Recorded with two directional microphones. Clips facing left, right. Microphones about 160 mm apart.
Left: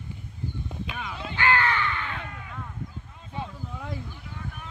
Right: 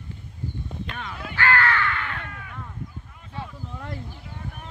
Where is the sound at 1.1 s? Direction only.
20° left (ahead or behind).